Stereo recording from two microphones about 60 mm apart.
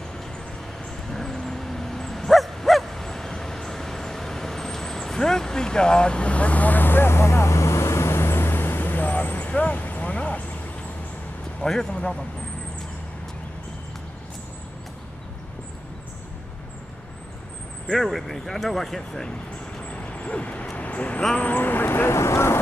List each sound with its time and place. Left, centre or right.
1.0 s dog: centre; by 10.4 s left
11.6 s a man's voice: centre
17.9 s speech: centre
19.9 s vehicle: left
21.4 s speech: left